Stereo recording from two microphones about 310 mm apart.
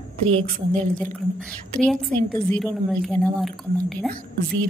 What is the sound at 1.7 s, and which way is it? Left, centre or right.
A woman's voice, centre.